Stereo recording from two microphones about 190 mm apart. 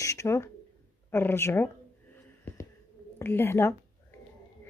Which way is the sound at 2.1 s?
15° left (ahead or behind).